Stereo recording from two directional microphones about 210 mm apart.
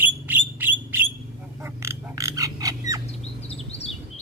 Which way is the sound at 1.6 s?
15° right (ahead or behind).